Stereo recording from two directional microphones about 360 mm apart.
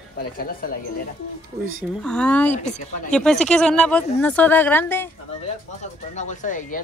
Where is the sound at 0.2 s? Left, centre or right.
Left.